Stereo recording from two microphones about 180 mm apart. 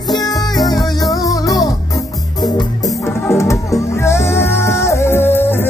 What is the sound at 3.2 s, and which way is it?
Music, 15° left (ahead or behind).